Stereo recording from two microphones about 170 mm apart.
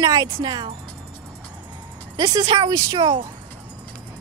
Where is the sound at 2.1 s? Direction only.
25° right (ahead or behind).